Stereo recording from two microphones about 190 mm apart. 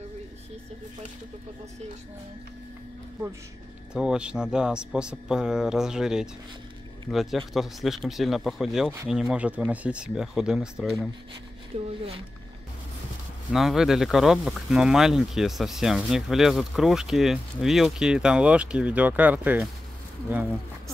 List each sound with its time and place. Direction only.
3.9 s speech: 5° right (ahead or behind)
11.7 s speech: 30° right (ahead or behind)
13.5 s speech: centre (ahead or behind)